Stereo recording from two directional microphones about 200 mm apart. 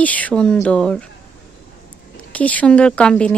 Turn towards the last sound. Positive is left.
turn(degrees=5)  # may be behind; listen again after turning